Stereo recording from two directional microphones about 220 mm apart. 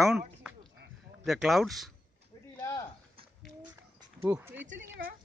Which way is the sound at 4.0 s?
10° right (ahead or behind).